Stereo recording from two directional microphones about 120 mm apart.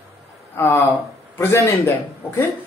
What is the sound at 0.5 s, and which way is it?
Speech, 20° left (ahead or behind).